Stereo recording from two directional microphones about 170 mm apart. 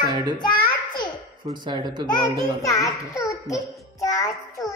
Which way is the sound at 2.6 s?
20° left (ahead or behind).